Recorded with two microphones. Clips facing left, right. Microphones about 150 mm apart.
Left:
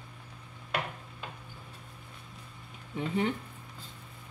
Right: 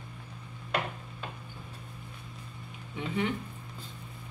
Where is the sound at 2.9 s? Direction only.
40° left (ahead or behind).